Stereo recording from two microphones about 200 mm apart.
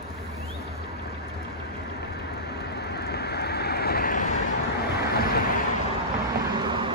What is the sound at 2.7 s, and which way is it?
Vehicle, 55° left (ahead or behind).